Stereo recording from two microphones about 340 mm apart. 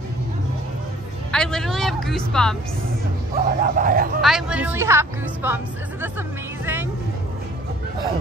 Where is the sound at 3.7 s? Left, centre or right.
Right.